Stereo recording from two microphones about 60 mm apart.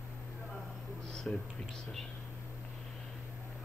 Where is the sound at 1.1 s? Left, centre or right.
Centre.